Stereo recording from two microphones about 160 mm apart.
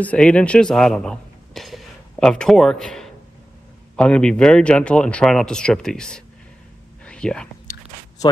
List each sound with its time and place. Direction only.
0.0 s a man's voice: 5° left (ahead or behind)
7.1 s whispering: 5° left (ahead or behind)
7.7 s chewing: 60° left (ahead or behind)